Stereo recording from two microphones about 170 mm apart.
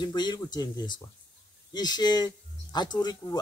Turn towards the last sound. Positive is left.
turn(degrees=25)  # may be behind; listen again after turning